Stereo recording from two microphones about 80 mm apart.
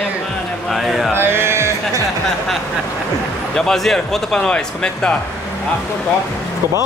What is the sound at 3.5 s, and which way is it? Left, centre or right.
A man's voice, centre.